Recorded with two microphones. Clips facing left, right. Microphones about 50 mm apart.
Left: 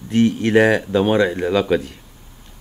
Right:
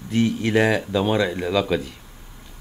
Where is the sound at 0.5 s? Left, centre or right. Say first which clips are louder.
Left 5 dB; centre.